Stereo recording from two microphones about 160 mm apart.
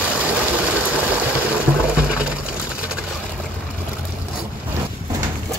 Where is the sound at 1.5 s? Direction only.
5° right (ahead or behind).